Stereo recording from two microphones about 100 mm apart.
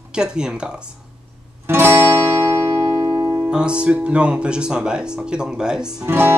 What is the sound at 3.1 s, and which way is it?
Music, 35° right (ahead or behind).